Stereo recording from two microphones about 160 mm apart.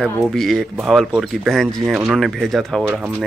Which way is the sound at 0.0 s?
Centre (ahead or behind).